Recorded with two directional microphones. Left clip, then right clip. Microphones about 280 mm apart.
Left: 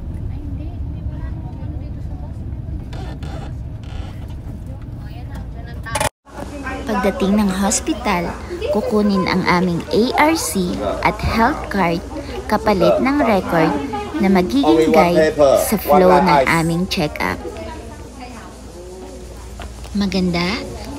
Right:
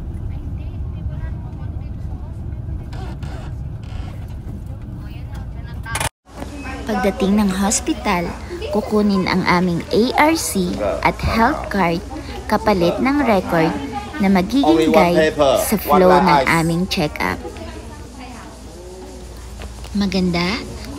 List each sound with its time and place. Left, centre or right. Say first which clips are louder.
6.5 s a sound: left 4 dB; centre
6.9 s speech: even; centre
19.9 s speech: even; centre